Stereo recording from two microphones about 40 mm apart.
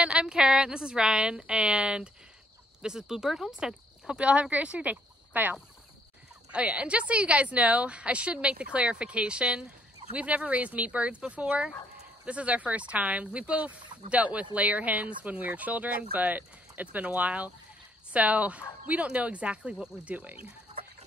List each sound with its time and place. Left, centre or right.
0.0 s speech: right
1.2 s speech: right
2.8 s speech: centre
3.5 s speech: right
5.3 s speech: right
6.5 s speech: right